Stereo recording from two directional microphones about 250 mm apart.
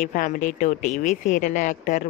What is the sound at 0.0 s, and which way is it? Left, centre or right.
Speech, left.